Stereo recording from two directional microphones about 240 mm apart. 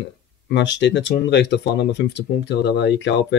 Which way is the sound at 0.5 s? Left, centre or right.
Left.